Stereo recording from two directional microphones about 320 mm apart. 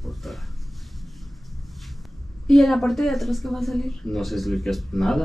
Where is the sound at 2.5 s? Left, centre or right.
Centre.